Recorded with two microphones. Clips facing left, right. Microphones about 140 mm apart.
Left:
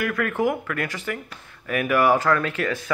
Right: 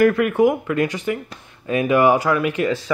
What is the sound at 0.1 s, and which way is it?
Speech, 15° right (ahead or behind).